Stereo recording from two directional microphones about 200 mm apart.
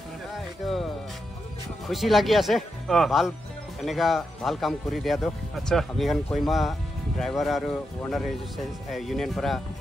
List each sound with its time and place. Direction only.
0.3 s music: centre (ahead or behind)
1.9 s speech: centre (ahead or behind)